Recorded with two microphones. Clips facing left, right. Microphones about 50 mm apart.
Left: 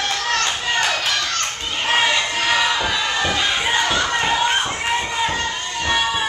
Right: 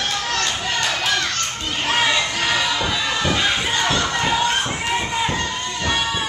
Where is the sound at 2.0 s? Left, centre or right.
Centre.